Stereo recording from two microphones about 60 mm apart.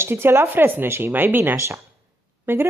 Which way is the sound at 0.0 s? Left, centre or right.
Right.